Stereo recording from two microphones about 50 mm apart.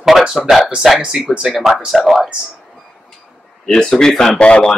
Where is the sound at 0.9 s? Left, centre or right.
Centre.